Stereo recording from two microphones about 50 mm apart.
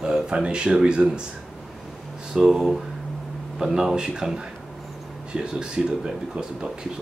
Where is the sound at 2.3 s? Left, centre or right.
Centre.